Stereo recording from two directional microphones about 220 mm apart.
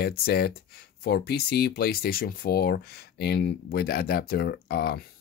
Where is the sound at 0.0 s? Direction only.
45° left (ahead or behind).